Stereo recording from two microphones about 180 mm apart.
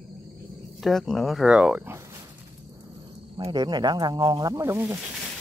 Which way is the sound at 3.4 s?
25° right (ahead or behind).